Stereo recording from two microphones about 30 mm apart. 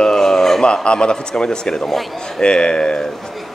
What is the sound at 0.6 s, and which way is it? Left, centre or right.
A man's voice, left.